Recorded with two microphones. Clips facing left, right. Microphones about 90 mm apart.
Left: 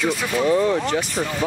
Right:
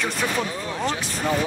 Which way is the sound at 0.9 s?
70° left (ahead or behind).